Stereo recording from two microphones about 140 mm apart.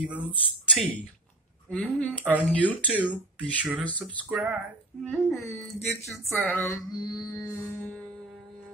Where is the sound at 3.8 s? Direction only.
10° left (ahead or behind).